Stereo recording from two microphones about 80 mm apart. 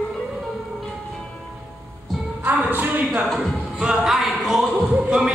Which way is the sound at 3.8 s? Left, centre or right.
Centre.